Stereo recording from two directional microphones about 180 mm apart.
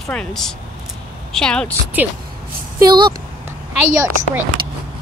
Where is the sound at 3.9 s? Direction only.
15° right (ahead or behind).